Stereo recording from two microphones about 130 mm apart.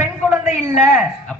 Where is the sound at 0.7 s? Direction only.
5° right (ahead or behind).